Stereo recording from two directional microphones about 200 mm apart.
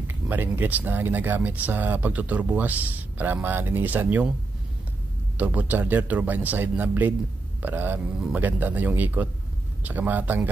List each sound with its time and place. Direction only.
0.1 s speech: 10° right (ahead or behind)
5.4 s speech: 10° right (ahead or behind)